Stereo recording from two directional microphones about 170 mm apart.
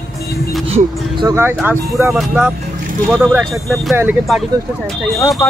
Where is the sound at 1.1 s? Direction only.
20° right (ahead or behind).